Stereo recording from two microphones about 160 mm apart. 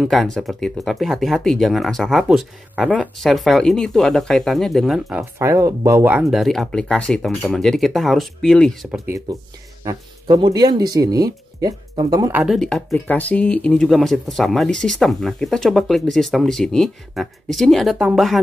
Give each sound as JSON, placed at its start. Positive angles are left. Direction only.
{"t": 0.0, "sound": "speech", "side_deg": 0}
{"t": 5.4, "sound": "speech", "side_deg": -20}
{"t": 6.1, "sound": "speech", "side_deg": 0}
{"t": 9.0, "sound": "speech", "side_deg": -20}
{"t": 12.3, "sound": "speech", "side_deg": -10}
{"t": 12.5, "sound": "speech", "side_deg": 5}